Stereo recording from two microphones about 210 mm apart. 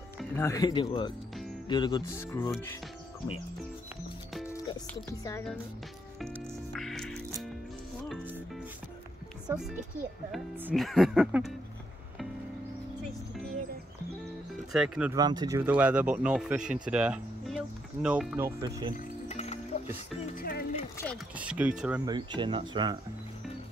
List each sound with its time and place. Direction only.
0.4 s speech: 15° left (ahead or behind)
4.5 s speech: 15° left (ahead or behind)
6.3 s music: centre (ahead or behind)
9.5 s speech: centre (ahead or behind)
14.7 s speech: 5° right (ahead or behind)
15.1 s speech: 20° right (ahead or behind)
18.6 s speech: 20° right (ahead or behind)
18.9 s music: 30° left (ahead or behind)
20.3 s speech: 45° left (ahead or behind)
21.4 s speech: 5° right (ahead or behind)
22.0 s speech: 20° right (ahead or behind)